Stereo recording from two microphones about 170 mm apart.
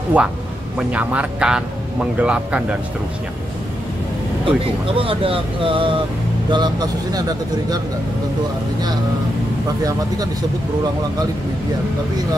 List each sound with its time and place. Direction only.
0.2 s speech: 10° right (ahead or behind)
4.5 s speech: 35° right (ahead or behind)
9.8 s speech: 20° right (ahead or behind)